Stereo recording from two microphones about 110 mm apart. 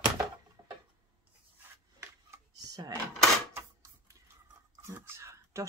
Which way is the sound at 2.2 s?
30° right (ahead or behind).